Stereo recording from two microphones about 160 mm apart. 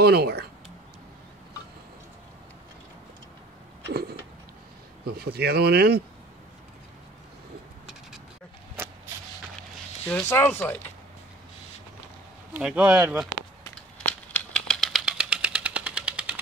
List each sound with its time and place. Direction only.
0.0 s speech: 85° right
5.0 s speech: 75° right (ahead or behind); by 6.0 s 90° right
10.2 s speech: 15° left (ahead or behind)
12.5 s speech: 10° right (ahead or behind)
14.0 s a sound: 10° left (ahead or behind)